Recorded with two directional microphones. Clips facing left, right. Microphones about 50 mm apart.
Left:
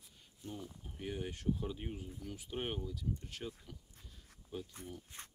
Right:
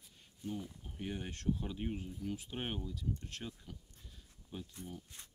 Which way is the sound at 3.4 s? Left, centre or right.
Centre.